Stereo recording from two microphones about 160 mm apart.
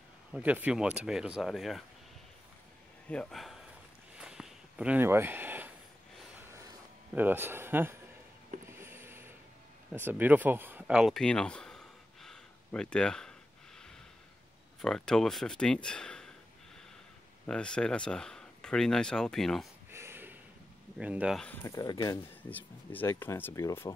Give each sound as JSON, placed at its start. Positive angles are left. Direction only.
{"t": 0.3, "sound": "speech", "side_deg": -10}
{"t": 3.1, "sound": "speech", "side_deg": 5}
{"t": 4.2, "sound": "a sound", "side_deg": -5}
{"t": 8.6, "sound": "mechanisms", "side_deg": -15}
{"t": 9.9, "sound": "speech", "side_deg": -10}
{"t": 14.8, "sound": "speech", "side_deg": 5}
{"t": 17.5, "sound": "speech", "side_deg": 5}
{"t": 19.9, "sound": "snort", "side_deg": -15}
{"t": 21.0, "sound": "speech", "side_deg": -10}
{"t": 21.6, "sound": "speech", "side_deg": 25}
{"t": 22.5, "sound": "speech", "side_deg": 10}